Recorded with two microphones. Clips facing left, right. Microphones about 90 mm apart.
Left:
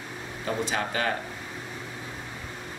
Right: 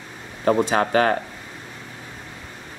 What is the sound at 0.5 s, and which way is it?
Speech, 50° right (ahead or behind).